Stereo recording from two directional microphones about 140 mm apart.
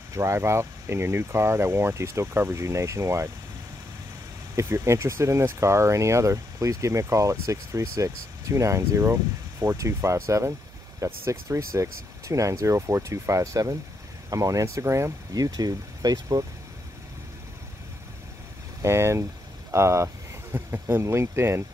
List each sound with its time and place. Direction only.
0.1 s speech: 20° right (ahead or behind)
4.6 s speech: 20° right (ahead or behind)
18.8 s speech: 20° right (ahead or behind)